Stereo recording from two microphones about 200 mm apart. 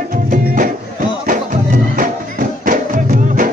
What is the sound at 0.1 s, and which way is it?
Music, 45° right (ahead or behind).